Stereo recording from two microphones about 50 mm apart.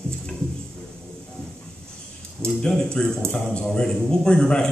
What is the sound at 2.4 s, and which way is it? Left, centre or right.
A man's voice, centre.